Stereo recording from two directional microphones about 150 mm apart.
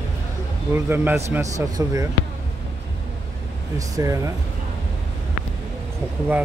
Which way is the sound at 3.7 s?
20° right (ahead or behind).